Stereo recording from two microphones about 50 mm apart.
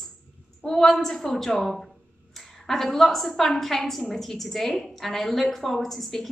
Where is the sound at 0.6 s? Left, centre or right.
Centre.